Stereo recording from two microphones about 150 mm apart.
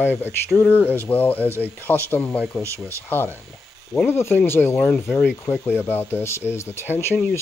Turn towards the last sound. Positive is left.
turn(degrees=15)  # may be behind; listen again after turning